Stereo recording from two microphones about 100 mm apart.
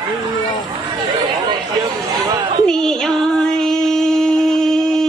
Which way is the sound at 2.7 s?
5° left (ahead or behind).